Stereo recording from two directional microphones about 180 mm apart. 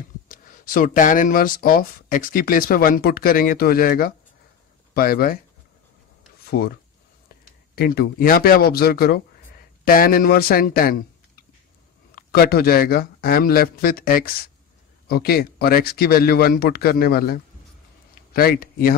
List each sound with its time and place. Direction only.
0.3 s speech: 50° left (ahead or behind)
6.4 s speech: 60° left (ahead or behind)
12.2 s speech: 60° left (ahead or behind)